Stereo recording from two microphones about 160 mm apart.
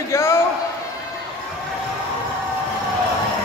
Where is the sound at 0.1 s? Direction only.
15° left (ahead or behind).